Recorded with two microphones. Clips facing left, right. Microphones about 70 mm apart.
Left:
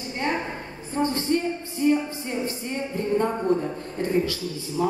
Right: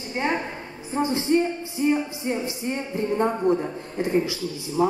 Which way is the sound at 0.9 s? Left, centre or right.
Centre.